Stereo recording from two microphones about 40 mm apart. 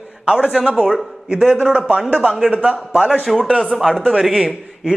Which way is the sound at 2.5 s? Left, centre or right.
Right.